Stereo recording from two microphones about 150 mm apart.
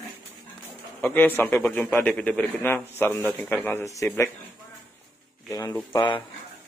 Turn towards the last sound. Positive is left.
turn(degrees=30)  # may be behind; listen again after turning